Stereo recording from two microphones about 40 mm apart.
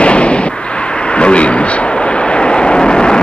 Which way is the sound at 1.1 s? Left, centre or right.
Left.